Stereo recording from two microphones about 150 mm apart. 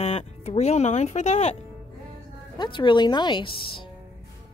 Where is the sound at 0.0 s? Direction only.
45° left (ahead or behind).